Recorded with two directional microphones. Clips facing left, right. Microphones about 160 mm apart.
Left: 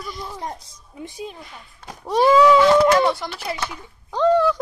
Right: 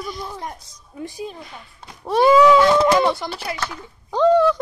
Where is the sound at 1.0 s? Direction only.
20° left (ahead or behind).